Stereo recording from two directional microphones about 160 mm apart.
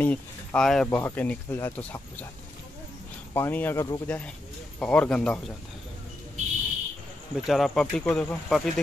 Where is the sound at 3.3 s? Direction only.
10° left (ahead or behind).